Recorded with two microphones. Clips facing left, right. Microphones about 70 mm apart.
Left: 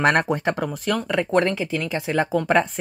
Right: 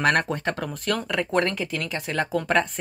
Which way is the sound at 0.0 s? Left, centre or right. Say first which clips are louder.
Left 3 dB; left.